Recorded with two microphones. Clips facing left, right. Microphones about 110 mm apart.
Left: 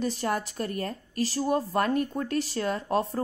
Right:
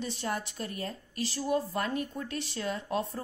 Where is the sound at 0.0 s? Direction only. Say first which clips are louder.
Left 6 dB; 45° left (ahead or behind).